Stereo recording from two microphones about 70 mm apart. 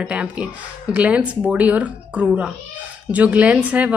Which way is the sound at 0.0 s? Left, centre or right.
Centre.